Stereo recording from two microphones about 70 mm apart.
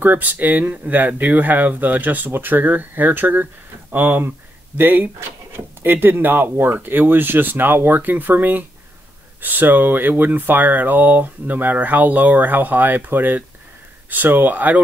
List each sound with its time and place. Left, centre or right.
0.0 s speech: right